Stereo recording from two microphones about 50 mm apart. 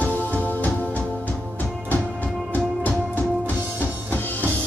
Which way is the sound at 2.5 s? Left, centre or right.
Left.